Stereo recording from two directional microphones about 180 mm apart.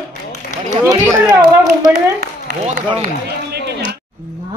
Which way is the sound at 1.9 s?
55° right (ahead or behind).